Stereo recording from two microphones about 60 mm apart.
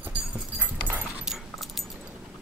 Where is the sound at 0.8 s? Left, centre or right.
Right.